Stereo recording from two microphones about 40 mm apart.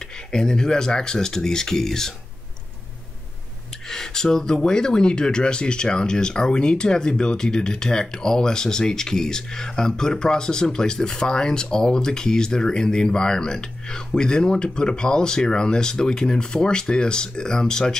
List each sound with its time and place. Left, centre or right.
0.0 s speech: centre
3.8 s speech: centre